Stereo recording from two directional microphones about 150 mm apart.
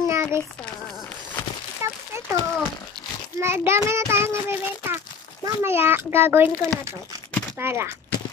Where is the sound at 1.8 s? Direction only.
20° right (ahead or behind).